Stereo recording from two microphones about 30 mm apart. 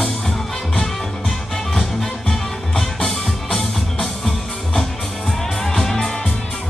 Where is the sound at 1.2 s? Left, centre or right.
Centre.